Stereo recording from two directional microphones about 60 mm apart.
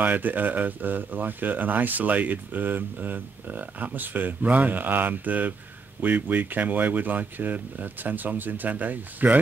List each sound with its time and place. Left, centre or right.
0.0 s speech: right